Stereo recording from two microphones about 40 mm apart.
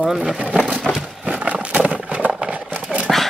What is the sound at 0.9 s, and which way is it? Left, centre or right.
Horse, right.